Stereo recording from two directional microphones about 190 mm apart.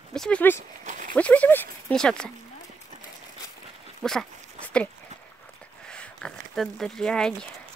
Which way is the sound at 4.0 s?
5° left (ahead or behind).